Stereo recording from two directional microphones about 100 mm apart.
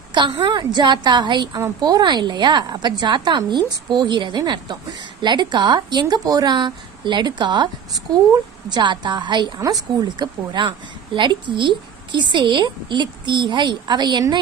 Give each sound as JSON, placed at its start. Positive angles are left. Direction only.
{"t": 0.1, "sound": "a woman's voice", "side_deg": -50}
{"t": 9.6, "sound": "a woman's voice", "side_deg": -35}